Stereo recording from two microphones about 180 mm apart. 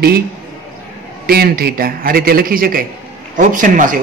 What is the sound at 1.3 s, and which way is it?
A man's voice, 60° right (ahead or behind).